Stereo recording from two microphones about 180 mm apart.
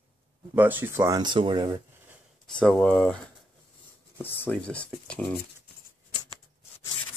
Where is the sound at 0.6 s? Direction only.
10° right (ahead or behind).